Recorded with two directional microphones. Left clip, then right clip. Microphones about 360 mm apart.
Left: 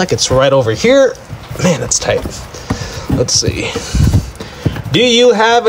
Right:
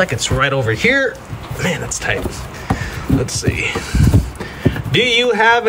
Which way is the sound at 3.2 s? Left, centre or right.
Centre.